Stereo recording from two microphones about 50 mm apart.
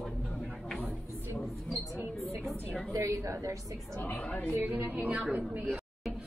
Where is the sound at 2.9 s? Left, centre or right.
Right.